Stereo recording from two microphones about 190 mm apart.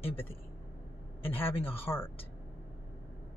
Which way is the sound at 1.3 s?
10° left (ahead or behind).